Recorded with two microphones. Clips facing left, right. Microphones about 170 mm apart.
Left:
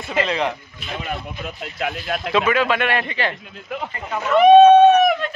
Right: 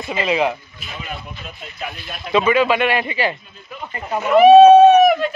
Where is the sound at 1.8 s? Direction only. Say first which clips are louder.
Left 7 dB; 90° left.